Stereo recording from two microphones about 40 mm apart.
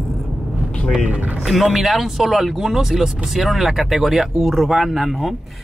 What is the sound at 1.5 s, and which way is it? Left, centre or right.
Speech, centre.